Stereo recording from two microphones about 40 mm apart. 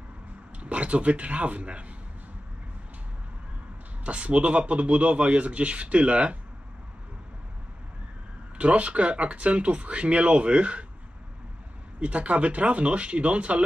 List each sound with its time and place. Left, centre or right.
0.6 s speech: right
4.0 s speech: right
8.5 s speech: right
12.0 s speech: right